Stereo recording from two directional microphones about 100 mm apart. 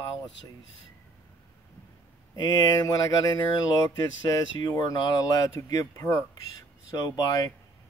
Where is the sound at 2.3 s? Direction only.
40° left (ahead or behind).